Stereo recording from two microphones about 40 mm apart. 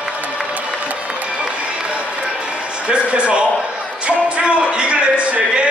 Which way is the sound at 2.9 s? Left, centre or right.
Right.